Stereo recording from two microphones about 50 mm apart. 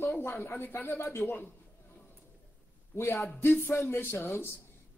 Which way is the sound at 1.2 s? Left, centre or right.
Left.